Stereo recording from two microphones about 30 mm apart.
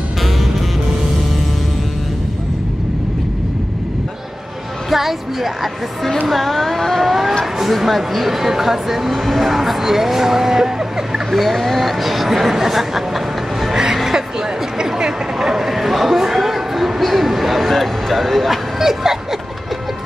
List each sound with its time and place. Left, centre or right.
4.8 s a woman's voice: centre
6.2 s speech: centre
7.1 s vehicle: centre
7.5 s speech: centre
9.1 s speech: centre
11.3 s speech: centre
15.0 s speech: centre
18.8 s speech: centre